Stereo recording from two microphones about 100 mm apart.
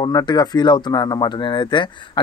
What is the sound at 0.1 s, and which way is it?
Speech, 45° left (ahead or behind).